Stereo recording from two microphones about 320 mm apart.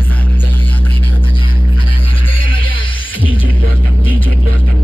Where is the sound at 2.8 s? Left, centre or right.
Centre.